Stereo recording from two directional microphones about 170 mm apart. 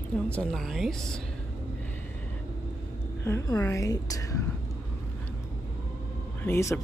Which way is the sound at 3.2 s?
15° left (ahead or behind).